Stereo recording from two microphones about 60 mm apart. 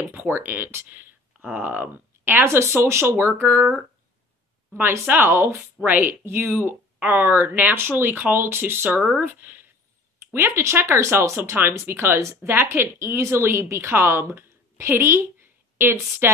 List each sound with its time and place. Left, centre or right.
0.1 s speech: right
2.4 s speech: right
4.7 s speech: right
6.2 s speech: right
8.9 s speech: centre
9.2 s speech: right
10.5 s speech: right